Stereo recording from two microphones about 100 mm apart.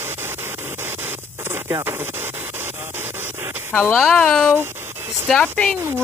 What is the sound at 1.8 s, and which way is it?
Speech, 20° right (ahead or behind).